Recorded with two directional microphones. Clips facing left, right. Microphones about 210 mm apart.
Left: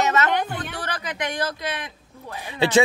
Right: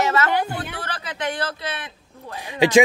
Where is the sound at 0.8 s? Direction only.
15° left (ahead or behind).